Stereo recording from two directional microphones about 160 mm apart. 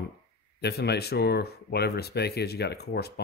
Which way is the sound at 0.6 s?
90° left.